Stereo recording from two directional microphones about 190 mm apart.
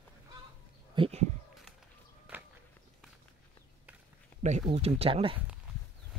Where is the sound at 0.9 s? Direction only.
30° right (ahead or behind).